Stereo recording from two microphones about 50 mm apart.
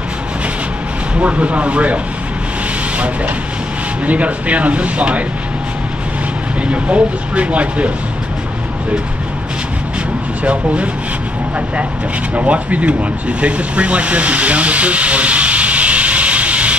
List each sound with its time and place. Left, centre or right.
1.1 s speech: right
4.0 s speech: right
6.7 s speech: right
10.4 s speech: right
12.4 s speech: right
13.4 s a sound: right